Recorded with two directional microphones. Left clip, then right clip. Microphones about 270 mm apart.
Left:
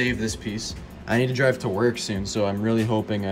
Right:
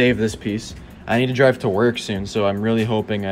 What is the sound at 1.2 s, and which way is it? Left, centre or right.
Speech, left.